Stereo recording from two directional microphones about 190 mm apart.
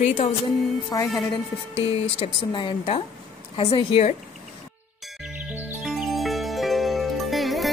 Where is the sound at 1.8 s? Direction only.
30° left (ahead or behind).